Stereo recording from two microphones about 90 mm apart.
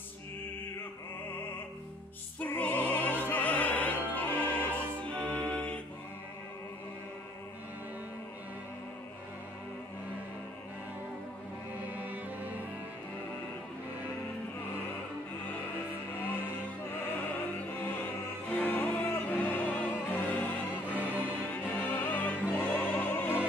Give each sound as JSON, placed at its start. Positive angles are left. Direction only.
{"t": 2.4, "sound": "opera", "side_deg": 20}
{"t": 11.9, "sound": "music", "side_deg": -20}
{"t": 17.2, "sound": "opera", "side_deg": 20}
{"t": 18.5, "sound": "music", "side_deg": 20}